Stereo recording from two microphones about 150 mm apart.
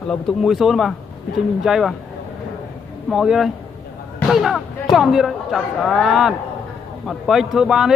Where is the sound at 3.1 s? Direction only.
5° right (ahead or behind).